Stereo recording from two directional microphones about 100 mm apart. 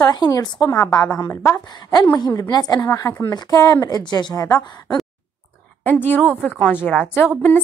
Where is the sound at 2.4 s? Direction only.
40° left (ahead or behind).